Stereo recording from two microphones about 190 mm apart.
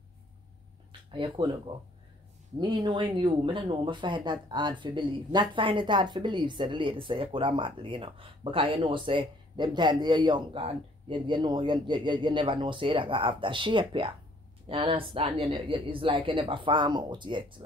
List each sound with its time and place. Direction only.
1.1 s speech: 25° right (ahead or behind)